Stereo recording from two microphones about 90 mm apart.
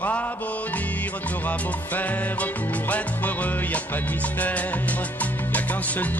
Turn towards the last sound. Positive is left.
turn(degrees=15)  # may be behind; listen again after turning